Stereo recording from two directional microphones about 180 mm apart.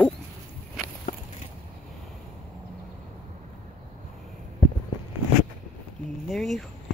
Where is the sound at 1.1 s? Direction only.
45° left (ahead or behind).